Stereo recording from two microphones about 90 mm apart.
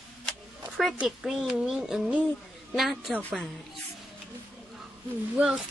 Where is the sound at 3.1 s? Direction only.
10° left (ahead or behind).